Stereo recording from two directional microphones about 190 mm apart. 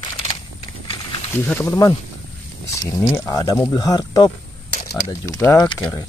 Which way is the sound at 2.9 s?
20° left (ahead or behind).